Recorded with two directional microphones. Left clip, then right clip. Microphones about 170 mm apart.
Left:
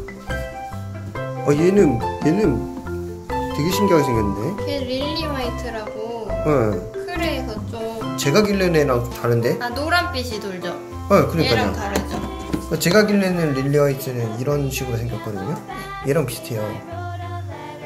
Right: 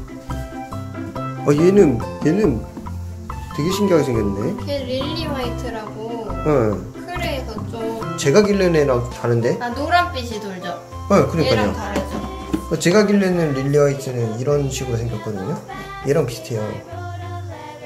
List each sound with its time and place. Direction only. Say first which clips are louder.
1.4 s speech: right 2 dB; 5° right (ahead or behind)
3.5 s speech: right 1 dB; 15° left (ahead or behind)
6.4 s speech: right 1 dB; 5° left (ahead or behind)
7.1 s music: even; 55° left (ahead or behind)
8.2 s speech: right 3 dB; centre (ahead or behind)
9.6 s a woman's voice: right 2 dB; 55° left (ahead or behind)
11.1 s speech: right 1 dB; centre (ahead or behind)
12.6 s speech: right 1 dB; centre (ahead or behind)